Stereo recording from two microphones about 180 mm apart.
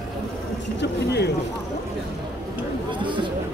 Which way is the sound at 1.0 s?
60° left (ahead or behind).